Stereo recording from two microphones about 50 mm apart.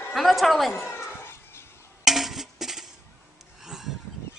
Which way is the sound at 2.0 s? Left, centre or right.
Centre.